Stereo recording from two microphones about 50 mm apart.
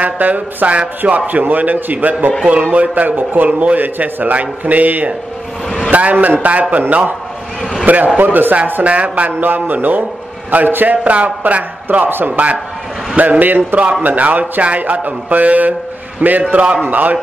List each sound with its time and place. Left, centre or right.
0.0 s a man's voice: right
5.9 s a sound: right
6.4 s a man's voice: right
8.8 s speech: right
9.4 s a man's voice: right